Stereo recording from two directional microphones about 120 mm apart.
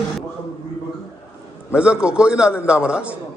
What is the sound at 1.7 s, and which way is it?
A man's voice, 10° right (ahead or behind).